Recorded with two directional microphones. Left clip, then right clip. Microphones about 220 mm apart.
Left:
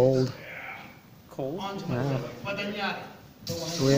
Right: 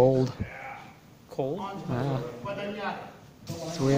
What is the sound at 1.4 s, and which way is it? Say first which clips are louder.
Speech: right 3 dB; 45° right (ahead or behind).